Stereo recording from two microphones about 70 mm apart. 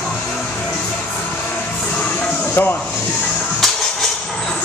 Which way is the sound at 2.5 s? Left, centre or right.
Left.